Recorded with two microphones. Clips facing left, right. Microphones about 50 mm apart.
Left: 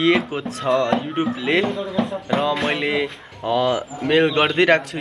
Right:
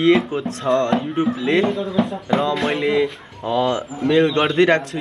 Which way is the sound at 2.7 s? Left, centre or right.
Left.